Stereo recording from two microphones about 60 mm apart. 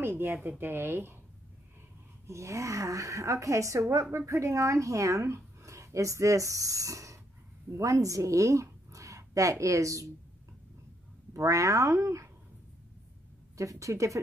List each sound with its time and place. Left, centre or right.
0.0 s a woman's voice: right
2.2 s a woman's voice: right
11.3 s speech: right
13.6 s speech: right